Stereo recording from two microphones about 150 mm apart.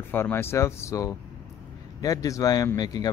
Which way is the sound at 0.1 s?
15° left (ahead or behind).